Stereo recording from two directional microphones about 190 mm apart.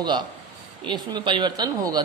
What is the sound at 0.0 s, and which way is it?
Speech, 20° right (ahead or behind).